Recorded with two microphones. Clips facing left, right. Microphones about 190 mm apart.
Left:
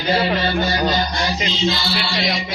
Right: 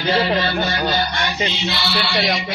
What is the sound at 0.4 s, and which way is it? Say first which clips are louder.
Music: left 1 dB; 40° left (ahead or behind).